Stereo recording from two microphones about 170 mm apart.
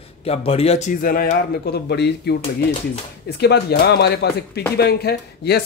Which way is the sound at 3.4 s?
75° left (ahead or behind).